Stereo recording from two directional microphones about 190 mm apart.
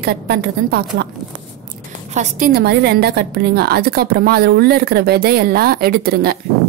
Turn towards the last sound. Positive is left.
turn(degrees=-55)  # may be behind; listen again after turning